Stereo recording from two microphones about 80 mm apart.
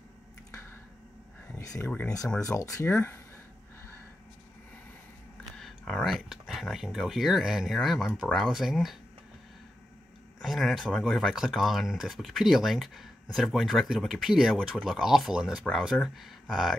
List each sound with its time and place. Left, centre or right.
1.6 s a sound: left
1.9 s speech: centre
2.6 s speech: left
2.9 s speech: centre
5.6 s speech: centre
10.4 s speech: centre